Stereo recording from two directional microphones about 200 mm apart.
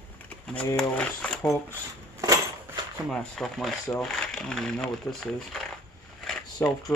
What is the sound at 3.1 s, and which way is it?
Speech, centre (ahead or behind).